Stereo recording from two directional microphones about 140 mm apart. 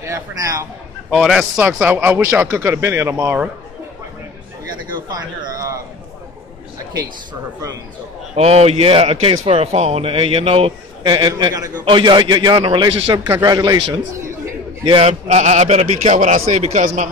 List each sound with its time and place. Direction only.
0.0 s speech: 20° right (ahead or behind)
1.1 s a man's voice: centre (ahead or behind)
4.9 s a man's voice: 30° right (ahead or behind)
8.4 s a man's voice: 50° right (ahead or behind); by 14.2 s 30° right (ahead or behind)
14.9 s a man's voice: 40° right (ahead or behind)
15.2 s a man's voice: 55° right (ahead or behind)